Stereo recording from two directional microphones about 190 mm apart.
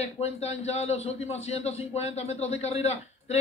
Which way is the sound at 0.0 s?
35° left (ahead or behind).